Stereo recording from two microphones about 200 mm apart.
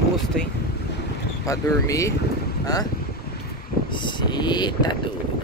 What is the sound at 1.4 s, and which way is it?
Speech, 15° left (ahead or behind).